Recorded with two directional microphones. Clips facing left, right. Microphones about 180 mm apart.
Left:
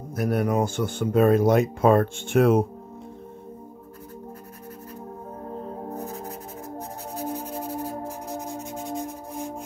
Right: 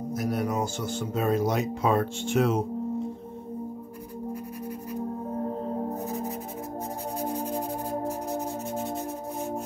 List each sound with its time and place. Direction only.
0.1 s speech: 60° left (ahead or behind)
5.9 s music: centre (ahead or behind)